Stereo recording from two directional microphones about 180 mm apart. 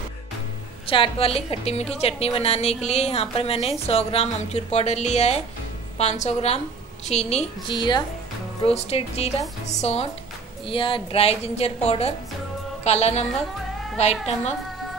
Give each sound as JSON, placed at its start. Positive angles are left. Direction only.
{"t": 0.8, "sound": "a woman's voice", "side_deg": 30}
{"t": 7.7, "sound": "speech", "side_deg": 25}
{"t": 8.6, "sound": "a woman's voice", "side_deg": 35}